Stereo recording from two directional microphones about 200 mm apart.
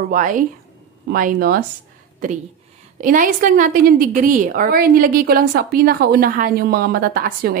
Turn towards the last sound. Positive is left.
turn(degrees=-45)  # may be behind; listen again after turning